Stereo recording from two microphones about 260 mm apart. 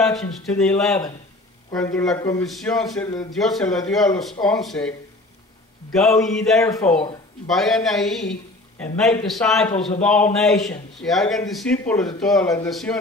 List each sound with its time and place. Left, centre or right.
0.0 s a man's voice: centre
6.2 s a man's voice: centre
6.7 s speech: centre
7.4 s a man's voice: centre
9.7 s a man's voice: left
10.0 s a man's voice: centre